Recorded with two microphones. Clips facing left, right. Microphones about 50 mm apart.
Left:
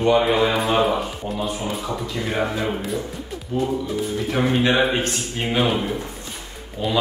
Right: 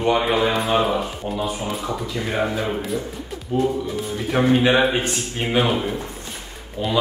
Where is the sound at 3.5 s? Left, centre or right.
Centre.